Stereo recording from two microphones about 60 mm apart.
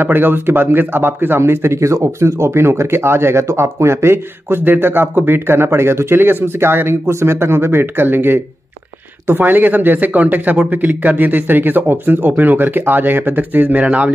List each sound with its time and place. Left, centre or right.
0.0 s a man's voice: right